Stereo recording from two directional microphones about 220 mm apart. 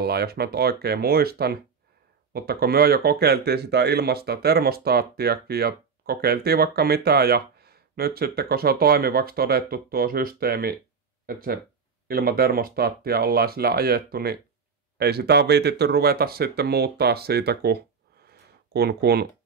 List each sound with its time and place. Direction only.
0.0 s speech: 45° right (ahead or behind)